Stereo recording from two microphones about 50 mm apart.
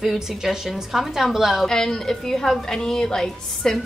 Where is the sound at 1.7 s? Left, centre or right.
Centre.